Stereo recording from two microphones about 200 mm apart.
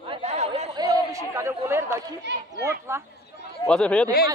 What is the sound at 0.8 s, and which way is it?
Speech, 15° right (ahead or behind).